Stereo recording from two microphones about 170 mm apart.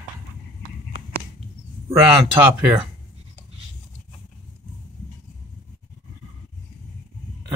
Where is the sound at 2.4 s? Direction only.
10° right (ahead or behind).